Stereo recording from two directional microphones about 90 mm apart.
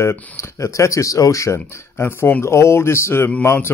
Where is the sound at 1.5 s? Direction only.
25° left (ahead or behind).